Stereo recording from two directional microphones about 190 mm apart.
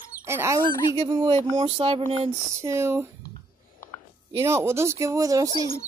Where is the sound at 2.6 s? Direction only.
15° right (ahead or behind).